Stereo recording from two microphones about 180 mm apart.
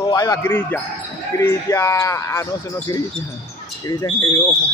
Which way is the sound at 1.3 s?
15° left (ahead or behind).